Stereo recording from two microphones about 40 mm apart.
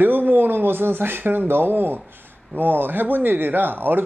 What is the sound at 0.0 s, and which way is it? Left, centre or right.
Speech, right.